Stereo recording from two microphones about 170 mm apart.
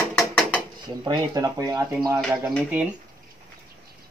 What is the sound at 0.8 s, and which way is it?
Speech, 25° right (ahead or behind).